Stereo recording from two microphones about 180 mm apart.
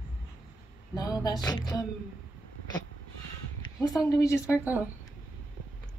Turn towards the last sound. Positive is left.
turn(degrees=-10)  # may be behind; listen again after turning